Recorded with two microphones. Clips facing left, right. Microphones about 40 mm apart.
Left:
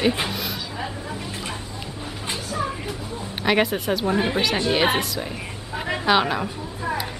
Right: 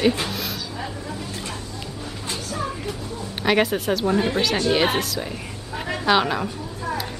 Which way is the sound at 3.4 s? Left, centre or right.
Centre.